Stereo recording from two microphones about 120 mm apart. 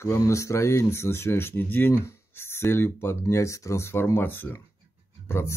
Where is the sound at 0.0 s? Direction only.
25° left (ahead or behind).